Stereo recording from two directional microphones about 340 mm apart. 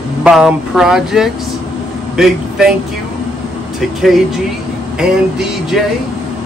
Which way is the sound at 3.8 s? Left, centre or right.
Centre.